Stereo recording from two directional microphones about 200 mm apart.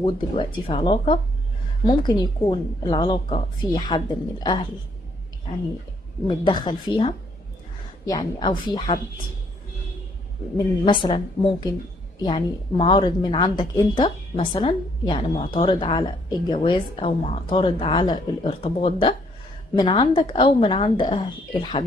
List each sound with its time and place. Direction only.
0.0 s a woman's voice: 25° left (ahead or behind)
6.2 s a woman's voice: 25° left (ahead or behind)
10.9 s a woman's voice: 25° left (ahead or behind)